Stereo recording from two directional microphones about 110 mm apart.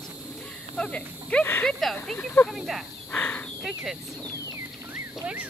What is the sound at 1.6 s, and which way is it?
Speech, 5° left (ahead or behind).